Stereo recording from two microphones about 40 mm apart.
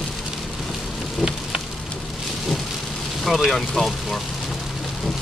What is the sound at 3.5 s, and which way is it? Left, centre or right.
Speech, centre.